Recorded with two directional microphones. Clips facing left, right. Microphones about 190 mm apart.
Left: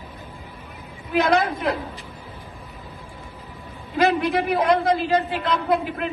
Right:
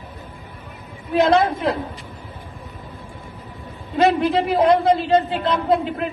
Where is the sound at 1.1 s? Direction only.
25° right (ahead or behind).